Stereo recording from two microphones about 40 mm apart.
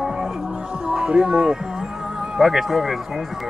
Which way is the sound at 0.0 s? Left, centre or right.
Centre.